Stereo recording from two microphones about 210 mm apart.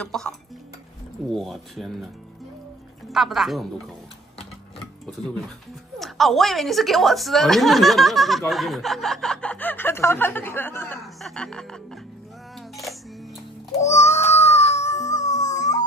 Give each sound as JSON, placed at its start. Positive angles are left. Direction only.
{"t": 0.0, "sound": "a woman's voice", "side_deg": 5}
{"t": 3.1, "sound": "a woman's voice", "side_deg": 0}
{"t": 5.0, "sound": "a woman's voice", "side_deg": 0}
{"t": 13.7, "sound": "baby cry", "side_deg": 30}